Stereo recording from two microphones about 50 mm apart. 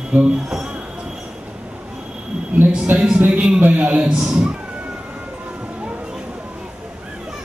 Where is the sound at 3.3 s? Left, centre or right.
Right.